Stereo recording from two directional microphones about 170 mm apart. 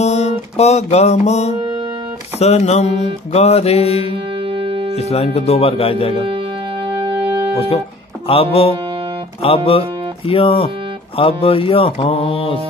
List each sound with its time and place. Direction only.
0.0 s music: 40° left (ahead or behind)
2.3 s speech: 40° left (ahead or behind)
4.4 s music: 30° right (ahead or behind)
4.9 s speech: 40° left (ahead or behind)
7.0 s music: 30° right (ahead or behind)
8.3 s speech: 35° left (ahead or behind)